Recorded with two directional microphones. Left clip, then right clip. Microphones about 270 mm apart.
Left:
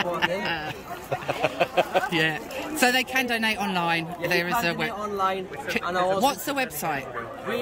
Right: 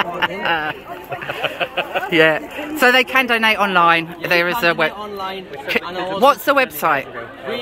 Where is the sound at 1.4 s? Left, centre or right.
Left.